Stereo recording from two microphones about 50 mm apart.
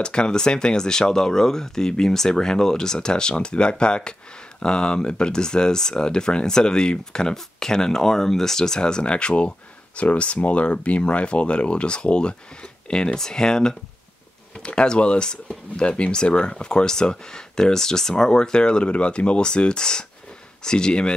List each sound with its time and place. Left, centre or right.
0.0 s speech: centre